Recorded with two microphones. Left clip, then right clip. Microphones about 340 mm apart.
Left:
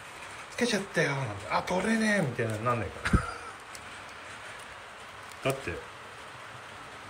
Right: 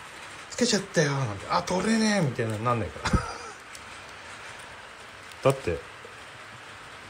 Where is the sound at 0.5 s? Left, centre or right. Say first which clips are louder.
Right 4 dB; centre.